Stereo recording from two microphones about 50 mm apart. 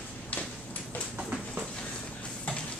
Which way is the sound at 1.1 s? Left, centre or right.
Right.